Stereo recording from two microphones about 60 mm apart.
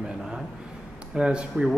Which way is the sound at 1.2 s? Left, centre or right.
Centre.